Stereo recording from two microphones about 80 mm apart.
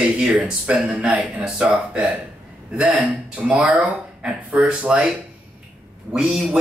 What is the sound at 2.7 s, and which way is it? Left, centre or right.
Speech, centre.